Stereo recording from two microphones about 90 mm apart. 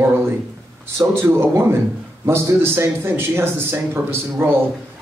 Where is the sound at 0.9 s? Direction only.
25° right (ahead or behind).